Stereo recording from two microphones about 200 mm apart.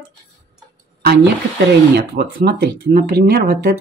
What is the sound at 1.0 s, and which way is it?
Speech, 55° right (ahead or behind).